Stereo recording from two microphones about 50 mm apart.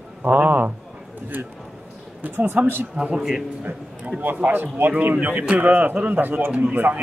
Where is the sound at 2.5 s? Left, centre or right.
Right.